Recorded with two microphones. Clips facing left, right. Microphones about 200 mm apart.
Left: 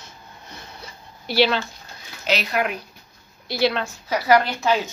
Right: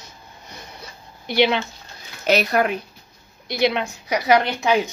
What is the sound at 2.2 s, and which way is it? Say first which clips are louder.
Speech: right 5 dB; 50° right (ahead or behind).